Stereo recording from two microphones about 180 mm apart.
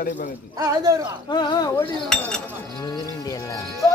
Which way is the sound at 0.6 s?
20° right (ahead or behind).